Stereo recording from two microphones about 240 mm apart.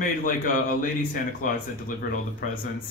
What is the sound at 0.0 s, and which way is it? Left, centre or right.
Speech, left.